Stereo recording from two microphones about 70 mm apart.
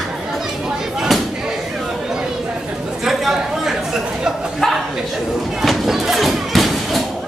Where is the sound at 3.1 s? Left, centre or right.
Centre.